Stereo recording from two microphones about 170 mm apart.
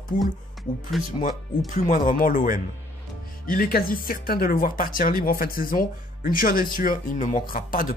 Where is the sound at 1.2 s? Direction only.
50° left (ahead or behind).